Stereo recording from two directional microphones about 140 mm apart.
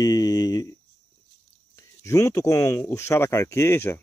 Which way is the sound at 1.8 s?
20° left (ahead or behind).